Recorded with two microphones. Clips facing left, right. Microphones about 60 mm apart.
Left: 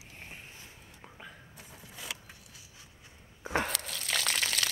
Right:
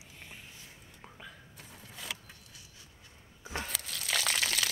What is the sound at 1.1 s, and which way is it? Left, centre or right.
Whispering, centre.